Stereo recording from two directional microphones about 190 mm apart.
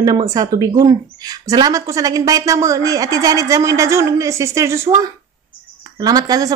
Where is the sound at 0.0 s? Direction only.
20° right (ahead or behind).